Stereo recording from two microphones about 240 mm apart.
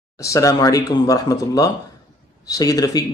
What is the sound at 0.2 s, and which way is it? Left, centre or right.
Speech, centre.